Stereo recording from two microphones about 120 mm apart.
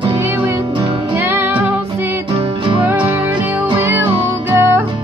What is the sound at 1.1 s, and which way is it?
Music, 15° right (ahead or behind).